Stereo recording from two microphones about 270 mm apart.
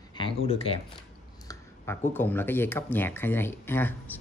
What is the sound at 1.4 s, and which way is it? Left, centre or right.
Speech, centre.